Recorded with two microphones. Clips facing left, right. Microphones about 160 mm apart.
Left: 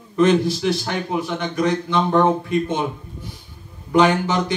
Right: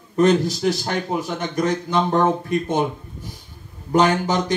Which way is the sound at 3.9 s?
40° right (ahead or behind).